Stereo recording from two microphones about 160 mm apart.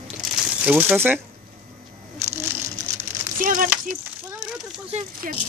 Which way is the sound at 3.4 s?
55° right (ahead or behind).